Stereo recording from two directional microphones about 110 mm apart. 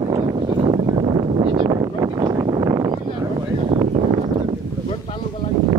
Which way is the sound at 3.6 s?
55° right (ahead or behind).